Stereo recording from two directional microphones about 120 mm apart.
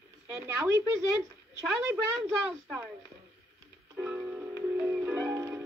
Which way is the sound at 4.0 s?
10° right (ahead or behind).